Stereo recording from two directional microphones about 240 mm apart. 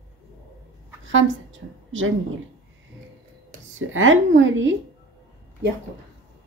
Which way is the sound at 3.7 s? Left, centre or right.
Right.